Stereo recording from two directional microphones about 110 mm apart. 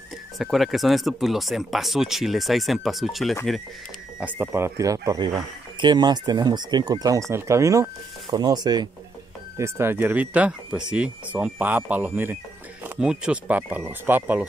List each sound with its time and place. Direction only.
0.4 s speech: centre (ahead or behind)
4.2 s speech: 15° right (ahead or behind)
5.2 s speech: 40° right (ahead or behind)
8.3 s speech: 40° right (ahead or behind)
9.6 s speech: 20° right (ahead or behind)